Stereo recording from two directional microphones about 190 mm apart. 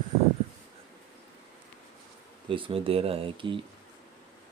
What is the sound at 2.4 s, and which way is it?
Speech, 25° right (ahead or behind).